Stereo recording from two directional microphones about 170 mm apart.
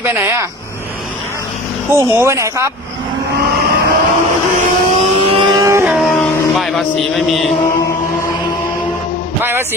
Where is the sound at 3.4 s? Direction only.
70° right (ahead or behind).